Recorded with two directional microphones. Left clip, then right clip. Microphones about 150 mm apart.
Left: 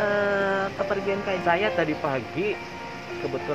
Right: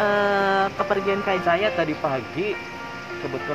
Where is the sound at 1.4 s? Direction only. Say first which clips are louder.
Left 1 dB; centre (ahead or behind).